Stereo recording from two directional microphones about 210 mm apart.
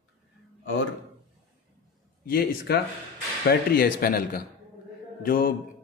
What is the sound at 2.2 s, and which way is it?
Speech, 50° left (ahead or behind).